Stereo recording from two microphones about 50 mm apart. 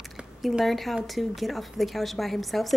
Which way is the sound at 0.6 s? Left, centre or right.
Centre.